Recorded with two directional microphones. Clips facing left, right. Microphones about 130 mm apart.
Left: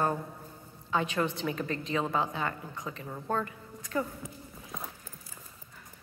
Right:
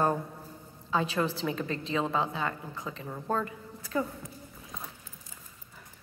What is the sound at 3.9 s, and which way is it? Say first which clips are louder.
Speech: right 1 dB; 15° right (ahead or behind).